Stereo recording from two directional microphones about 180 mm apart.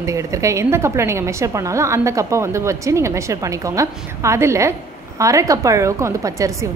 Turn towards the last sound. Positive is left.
turn(degrees=-15)  # may be behind; listen again after turning